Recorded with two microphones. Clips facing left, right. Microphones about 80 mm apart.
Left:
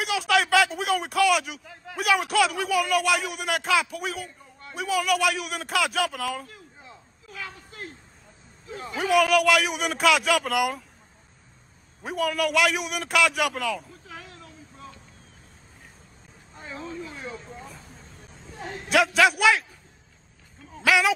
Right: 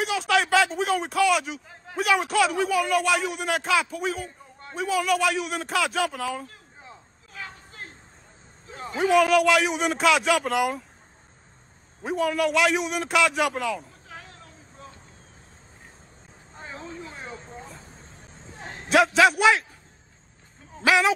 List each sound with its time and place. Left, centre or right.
0.0 s a man's voice: centre
6.8 s a sound: right
8.9 s a man's voice: centre
12.0 s a man's voice: centre
16.5 s vehicle: right
18.9 s a man's voice: centre
20.8 s a man's voice: centre